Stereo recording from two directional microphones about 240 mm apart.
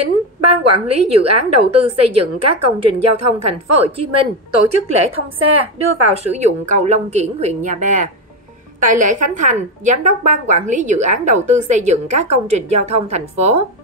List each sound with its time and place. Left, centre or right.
0.4 s a woman's voice: right
3.8 s a woman's voice: right